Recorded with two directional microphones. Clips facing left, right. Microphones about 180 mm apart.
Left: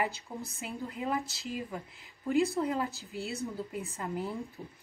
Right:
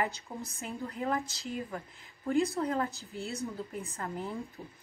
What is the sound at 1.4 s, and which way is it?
Speech, centre (ahead or behind).